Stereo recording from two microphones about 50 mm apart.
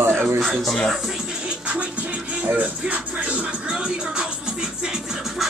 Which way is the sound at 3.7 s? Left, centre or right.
Centre.